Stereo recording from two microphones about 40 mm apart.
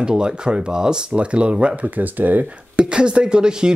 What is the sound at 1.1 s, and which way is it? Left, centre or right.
Speech, right.